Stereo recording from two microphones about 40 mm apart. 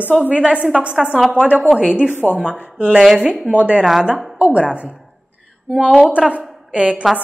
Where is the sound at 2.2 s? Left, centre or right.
Right.